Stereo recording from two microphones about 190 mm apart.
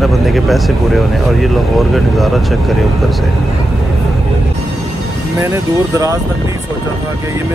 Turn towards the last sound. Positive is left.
turn(degrees=-15)  # may be behind; listen again after turning